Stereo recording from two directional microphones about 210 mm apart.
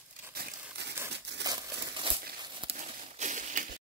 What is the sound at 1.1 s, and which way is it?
Crumpling, 55° right (ahead or behind).